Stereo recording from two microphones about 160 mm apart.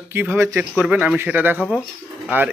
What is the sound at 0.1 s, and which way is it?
Speech, 15° right (ahead or behind).